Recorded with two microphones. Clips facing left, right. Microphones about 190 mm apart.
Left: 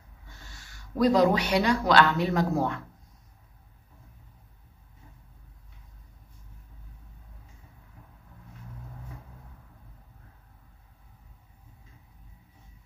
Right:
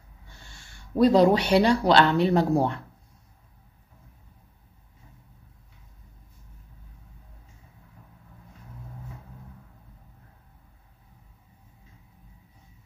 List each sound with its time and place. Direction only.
0.4 s speech: 30° right (ahead or behind)